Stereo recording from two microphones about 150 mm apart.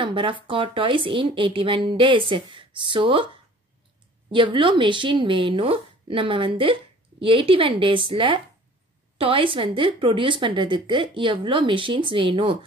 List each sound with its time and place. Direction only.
0.0 s speech: 35° right (ahead or behind)
4.3 s speech: 35° right (ahead or behind)